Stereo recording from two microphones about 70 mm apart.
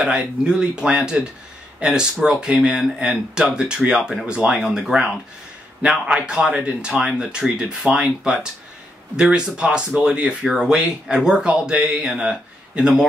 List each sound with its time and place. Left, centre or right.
0.0 s speech: centre